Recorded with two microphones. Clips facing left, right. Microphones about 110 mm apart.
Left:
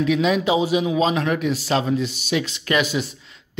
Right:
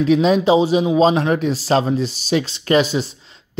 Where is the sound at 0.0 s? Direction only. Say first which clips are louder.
Right 5 dB; 35° right (ahead or behind).